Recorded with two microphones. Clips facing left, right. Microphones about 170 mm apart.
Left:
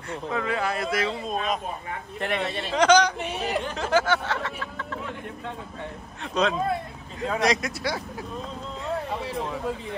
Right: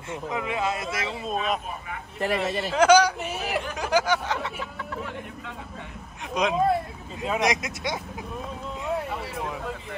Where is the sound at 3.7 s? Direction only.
15° right (ahead or behind).